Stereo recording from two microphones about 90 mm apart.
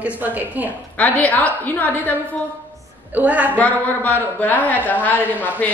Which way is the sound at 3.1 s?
15° right (ahead or behind).